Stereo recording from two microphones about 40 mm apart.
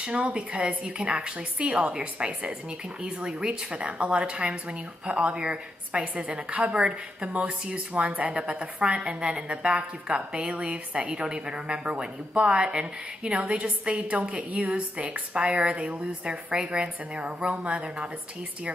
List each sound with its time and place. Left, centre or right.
0.0 s a woman's voice: right
3.8 s speech: right